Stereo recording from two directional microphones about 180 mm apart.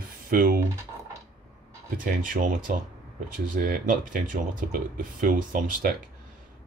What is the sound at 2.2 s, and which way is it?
Speech, 45° right (ahead or behind).